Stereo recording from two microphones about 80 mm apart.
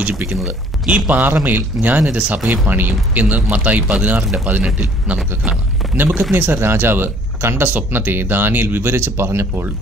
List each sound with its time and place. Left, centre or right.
0.0 s speech: centre
5.9 s speech: right